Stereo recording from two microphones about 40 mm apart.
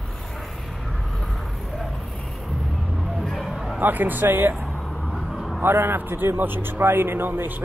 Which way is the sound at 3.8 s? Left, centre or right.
Right.